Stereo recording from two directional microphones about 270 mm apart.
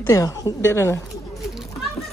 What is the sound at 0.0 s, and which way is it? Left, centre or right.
A woman's voice, centre.